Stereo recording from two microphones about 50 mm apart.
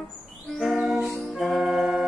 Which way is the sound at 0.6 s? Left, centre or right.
Centre.